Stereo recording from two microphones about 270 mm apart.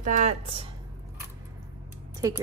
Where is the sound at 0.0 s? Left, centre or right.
Right.